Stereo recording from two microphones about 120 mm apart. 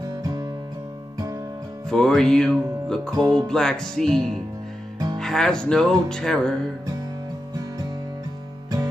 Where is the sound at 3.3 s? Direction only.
5° left (ahead or behind).